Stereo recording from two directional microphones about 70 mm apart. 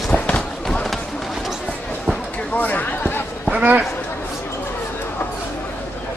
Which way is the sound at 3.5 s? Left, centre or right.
Right.